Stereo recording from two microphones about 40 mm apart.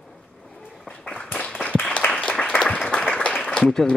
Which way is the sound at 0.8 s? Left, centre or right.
Left.